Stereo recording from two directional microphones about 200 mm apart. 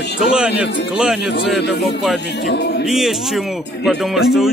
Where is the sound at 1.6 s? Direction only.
55° left (ahead or behind).